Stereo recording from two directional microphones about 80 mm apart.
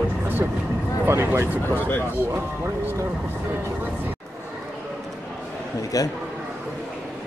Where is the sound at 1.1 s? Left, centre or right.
Right.